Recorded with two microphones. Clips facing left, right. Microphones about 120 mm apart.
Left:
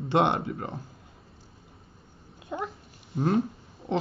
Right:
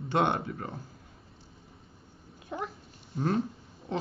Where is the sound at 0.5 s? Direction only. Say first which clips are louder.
Left 3 dB; 25° left (ahead or behind).